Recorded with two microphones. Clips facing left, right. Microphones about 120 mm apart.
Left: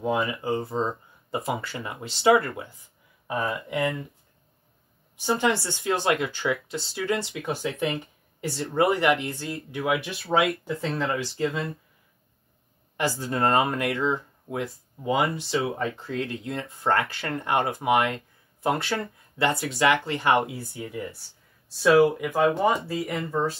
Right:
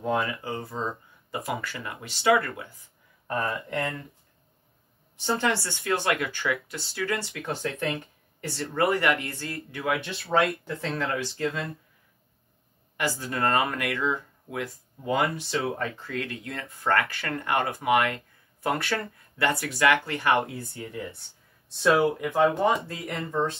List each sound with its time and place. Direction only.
0.2 s speech: 20° left (ahead or behind)
3.3 s speech: centre (ahead or behind)
5.2 s speech: 10° left (ahead or behind)
5.5 s speech: 20° left (ahead or behind); by 8.5 s 5° left (ahead or behind)
8.5 s speech: 20° left (ahead or behind); by 11.1 s 5° left (ahead or behind)
12.9 s speech: 25° left (ahead or behind)
20.4 s speech: 5° left (ahead or behind)